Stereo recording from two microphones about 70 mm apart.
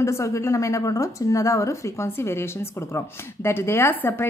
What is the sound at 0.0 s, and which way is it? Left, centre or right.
A woman's voice, left.